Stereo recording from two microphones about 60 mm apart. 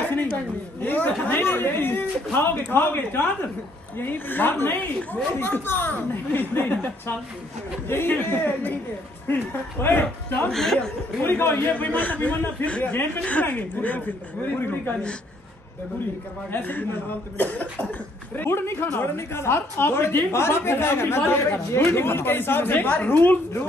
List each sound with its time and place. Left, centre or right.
0.0 s a sound: left
0.8 s a woman's voice: left
7.9 s a woman's voice: left
10.5 s speech: centre
11.2 s a man's voice: left
16.5 s a woman's voice: left